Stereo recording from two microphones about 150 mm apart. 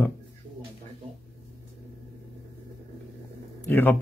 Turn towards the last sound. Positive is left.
turn(degrees=15)  # may be behind; listen again after turning